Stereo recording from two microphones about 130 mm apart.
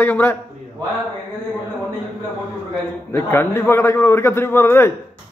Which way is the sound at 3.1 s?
20° left (ahead or behind).